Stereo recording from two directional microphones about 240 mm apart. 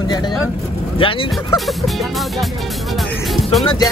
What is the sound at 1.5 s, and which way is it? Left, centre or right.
Speech, centre.